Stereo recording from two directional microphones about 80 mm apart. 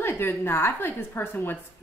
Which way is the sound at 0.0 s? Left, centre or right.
Left.